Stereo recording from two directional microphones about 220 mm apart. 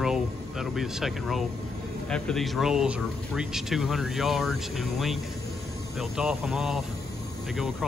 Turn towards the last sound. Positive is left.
turn(degrees=0)  # may be behind; listen again after turning